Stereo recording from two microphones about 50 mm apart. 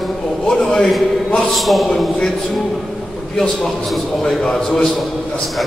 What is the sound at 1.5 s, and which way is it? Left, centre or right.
Speech, centre.